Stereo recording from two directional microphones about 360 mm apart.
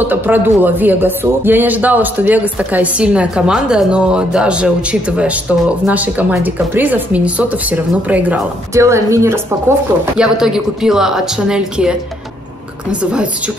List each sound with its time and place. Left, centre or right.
0.0 s speech: centre